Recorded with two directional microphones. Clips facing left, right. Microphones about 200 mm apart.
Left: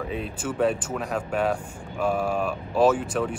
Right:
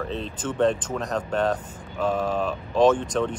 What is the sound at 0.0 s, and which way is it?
Speech, 10° left (ahead or behind).